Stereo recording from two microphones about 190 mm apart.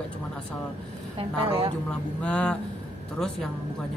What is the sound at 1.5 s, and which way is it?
Speech, 30° right (ahead or behind).